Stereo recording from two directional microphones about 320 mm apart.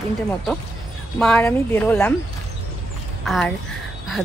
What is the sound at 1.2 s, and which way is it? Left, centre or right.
Speech, centre.